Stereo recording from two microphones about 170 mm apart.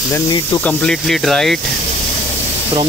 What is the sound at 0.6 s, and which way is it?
Speech, 5° left (ahead or behind).